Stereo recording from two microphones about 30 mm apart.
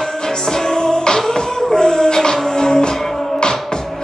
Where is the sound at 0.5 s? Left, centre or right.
Left.